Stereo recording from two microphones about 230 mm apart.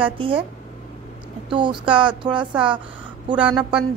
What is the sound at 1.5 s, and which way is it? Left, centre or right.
Speech, right.